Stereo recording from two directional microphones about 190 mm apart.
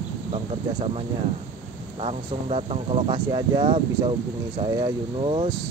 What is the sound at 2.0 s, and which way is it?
Speech, 35° right (ahead or behind).